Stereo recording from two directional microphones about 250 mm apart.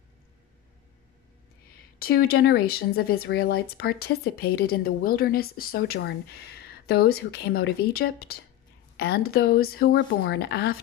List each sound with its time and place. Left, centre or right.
2.0 s speech: left